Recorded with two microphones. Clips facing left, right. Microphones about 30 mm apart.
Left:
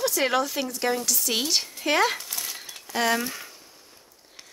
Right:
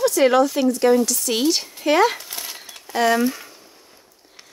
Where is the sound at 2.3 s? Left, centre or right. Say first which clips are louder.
Right 2 dB; centre.